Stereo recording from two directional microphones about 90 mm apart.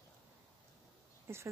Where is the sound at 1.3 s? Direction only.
30° right (ahead or behind).